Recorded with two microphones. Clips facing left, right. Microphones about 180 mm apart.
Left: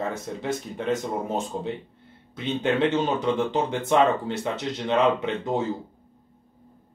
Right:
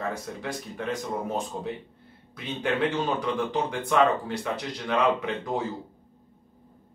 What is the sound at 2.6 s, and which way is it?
Speech, 25° left (ahead or behind).